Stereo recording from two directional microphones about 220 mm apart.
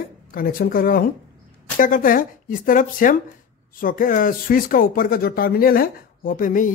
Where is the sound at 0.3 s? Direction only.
40° left (ahead or behind).